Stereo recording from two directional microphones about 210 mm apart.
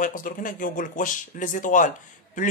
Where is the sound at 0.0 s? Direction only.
40° left (ahead or behind).